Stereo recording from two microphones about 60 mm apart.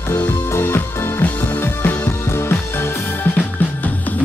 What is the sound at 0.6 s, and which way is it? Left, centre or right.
Music, left.